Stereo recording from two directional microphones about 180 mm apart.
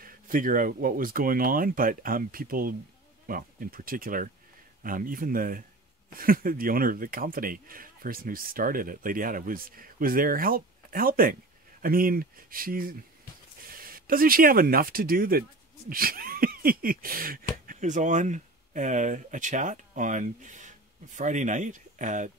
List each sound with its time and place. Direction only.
0.0 s speech: 50° right (ahead or behind)
17.6 s speech: 45° right (ahead or behind)